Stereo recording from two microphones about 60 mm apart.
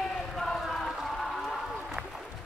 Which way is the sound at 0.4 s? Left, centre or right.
Centre.